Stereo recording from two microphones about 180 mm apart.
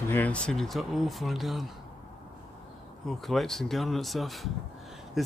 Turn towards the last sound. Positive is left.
turn(degrees=0)  # may be behind; listen again after turning